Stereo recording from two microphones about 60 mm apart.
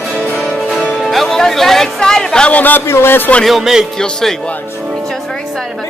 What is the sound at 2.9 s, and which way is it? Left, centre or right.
Speech, left.